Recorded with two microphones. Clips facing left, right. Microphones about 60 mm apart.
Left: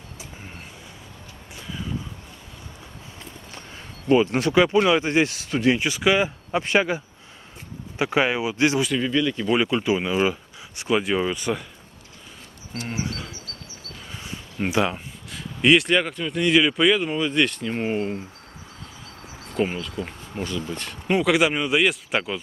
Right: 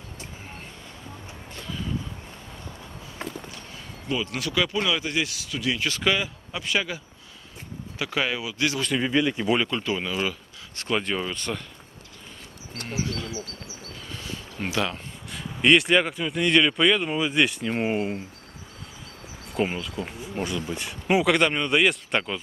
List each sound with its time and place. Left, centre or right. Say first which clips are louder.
1.5 s vehicle: even; centre
4.1 s speech: left 10 dB; left
5.8 s speech: left 3 dB; centre
6.1 s speech: left 7 dB; left
8.0 s speech: left 6 dB; left
8.9 s speech: left 1 dB; centre
9.6 s speech: left 5 dB; centre
10.8 s speech: left 5 dB; centre
12.8 s speech: even; left
14.0 s a sound: even; centre
15.3 s speech: left 1 dB; centre
19.5 s speech: left 2 dB; centre